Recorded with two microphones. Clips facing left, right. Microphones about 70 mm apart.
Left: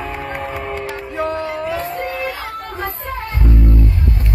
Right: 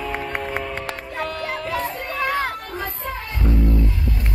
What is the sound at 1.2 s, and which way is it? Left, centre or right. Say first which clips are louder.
Music: left 6 dB; left.